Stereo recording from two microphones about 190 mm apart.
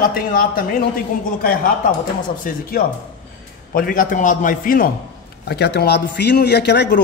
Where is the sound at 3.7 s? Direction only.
45° left (ahead or behind).